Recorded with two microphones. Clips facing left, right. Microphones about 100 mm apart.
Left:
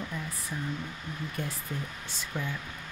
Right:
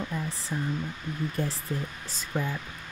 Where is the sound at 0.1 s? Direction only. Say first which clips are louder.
Right 4 dB; 30° right (ahead or behind).